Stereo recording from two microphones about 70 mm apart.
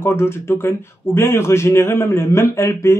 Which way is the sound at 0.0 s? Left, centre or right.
Left.